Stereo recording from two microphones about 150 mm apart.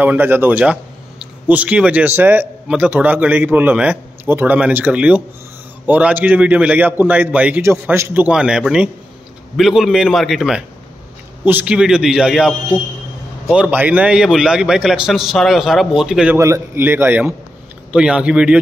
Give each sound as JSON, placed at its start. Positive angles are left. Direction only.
{"t": 0.0, "sound": "a man's voice", "side_deg": -15}
{"t": 16.3, "sound": "a man's voice", "side_deg": -20}